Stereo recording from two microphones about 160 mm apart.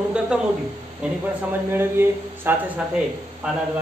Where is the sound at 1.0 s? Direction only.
5° right (ahead or behind).